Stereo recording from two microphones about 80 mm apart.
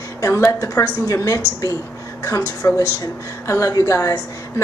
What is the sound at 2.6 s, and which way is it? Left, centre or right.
A woman's voice, left.